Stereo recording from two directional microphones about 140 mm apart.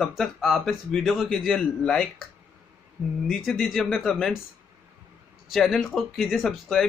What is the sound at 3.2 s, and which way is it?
A man's voice, centre (ahead or behind).